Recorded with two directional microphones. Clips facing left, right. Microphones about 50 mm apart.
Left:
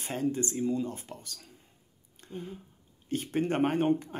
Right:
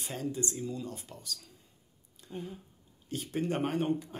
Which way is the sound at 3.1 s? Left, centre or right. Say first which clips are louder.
Left 4 dB; left.